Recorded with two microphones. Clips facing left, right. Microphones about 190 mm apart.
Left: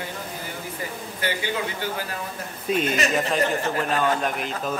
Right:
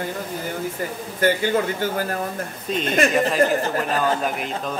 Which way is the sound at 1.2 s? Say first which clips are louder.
Right 8 dB; 45° right (ahead or behind).